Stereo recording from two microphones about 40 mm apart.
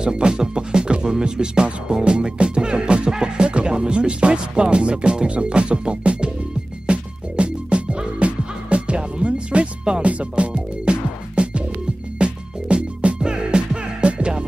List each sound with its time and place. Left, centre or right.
0.0 s speech: right
6.9 s music: right